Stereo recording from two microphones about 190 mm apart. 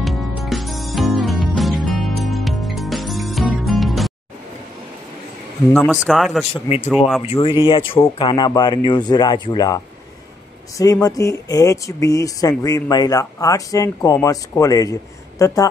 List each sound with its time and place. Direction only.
0.0 s music: centre (ahead or behind)
6.0 s speech: centre (ahead or behind)
6.5 s speech: 35° left (ahead or behind)
10.8 s speech: 20° left (ahead or behind)